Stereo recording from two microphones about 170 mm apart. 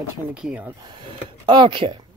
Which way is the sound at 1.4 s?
30° right (ahead or behind).